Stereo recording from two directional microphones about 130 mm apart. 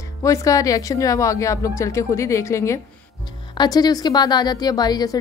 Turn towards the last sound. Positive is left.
turn(degrees=30)  # may be behind; listen again after turning